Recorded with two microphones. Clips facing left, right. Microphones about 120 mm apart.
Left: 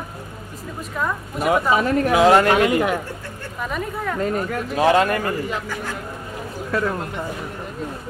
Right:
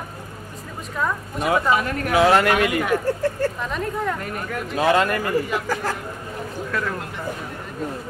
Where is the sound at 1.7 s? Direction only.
30° left (ahead or behind).